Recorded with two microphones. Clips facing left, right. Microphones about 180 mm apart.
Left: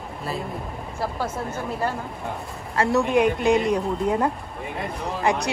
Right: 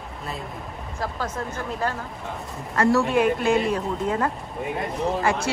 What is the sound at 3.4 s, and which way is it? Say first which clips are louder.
Speech: left 2 dB; 15° left (ahead or behind).